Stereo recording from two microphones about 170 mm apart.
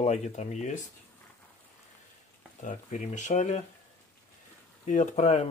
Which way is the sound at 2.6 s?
45° left (ahead or behind).